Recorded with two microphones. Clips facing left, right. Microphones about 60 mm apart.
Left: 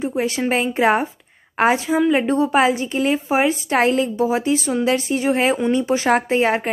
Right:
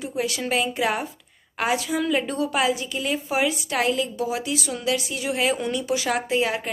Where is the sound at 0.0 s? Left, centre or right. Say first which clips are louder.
Left 6 dB; left.